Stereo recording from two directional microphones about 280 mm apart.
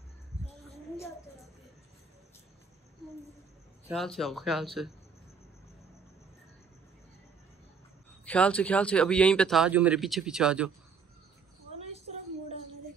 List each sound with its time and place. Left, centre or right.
0.7 s a sound: centre
3.9 s speech: centre
8.3 s speech: centre